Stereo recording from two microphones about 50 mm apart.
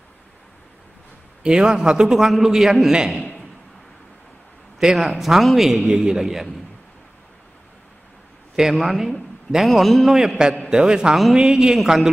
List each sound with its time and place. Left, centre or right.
1.4 s a man's voice: centre
4.7 s a man's voice: centre
8.5 s a man's voice: centre
10.1 s a man's voice: centre
11.7 s a man's voice: centre